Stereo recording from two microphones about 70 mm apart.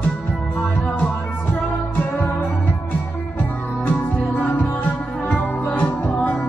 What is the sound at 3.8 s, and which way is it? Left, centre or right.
Music, left.